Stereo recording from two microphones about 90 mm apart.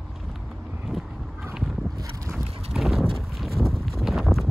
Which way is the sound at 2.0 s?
30° right (ahead or behind).